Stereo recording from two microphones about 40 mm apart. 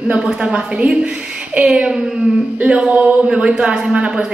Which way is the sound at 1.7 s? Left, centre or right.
Centre.